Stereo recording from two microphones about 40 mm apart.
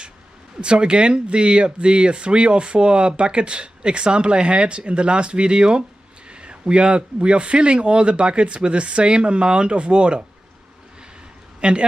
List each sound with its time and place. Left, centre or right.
0.6 s speech: right
11.6 s a woman's voice: right